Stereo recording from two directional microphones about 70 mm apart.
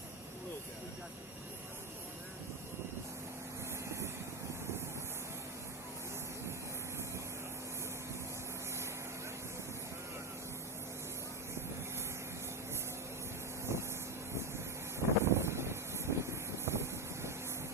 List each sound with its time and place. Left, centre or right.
13.7 s vehicle: right
15.0 s vehicle: right